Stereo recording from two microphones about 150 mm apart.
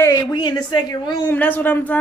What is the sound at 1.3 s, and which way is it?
Speech, 10° left (ahead or behind).